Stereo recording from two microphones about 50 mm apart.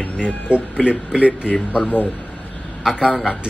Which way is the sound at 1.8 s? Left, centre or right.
Left.